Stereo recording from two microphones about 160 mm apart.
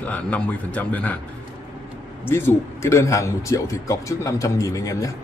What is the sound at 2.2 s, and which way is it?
Speech, 15° left (ahead or behind).